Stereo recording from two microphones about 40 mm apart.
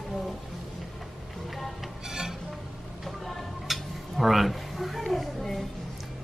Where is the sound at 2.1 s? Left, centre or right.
Centre.